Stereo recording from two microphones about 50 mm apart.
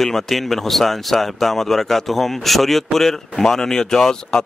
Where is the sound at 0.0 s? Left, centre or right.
Centre.